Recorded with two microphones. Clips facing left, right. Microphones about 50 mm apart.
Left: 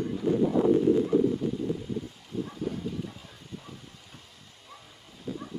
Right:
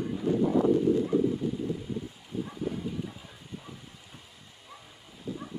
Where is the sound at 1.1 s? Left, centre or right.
Centre.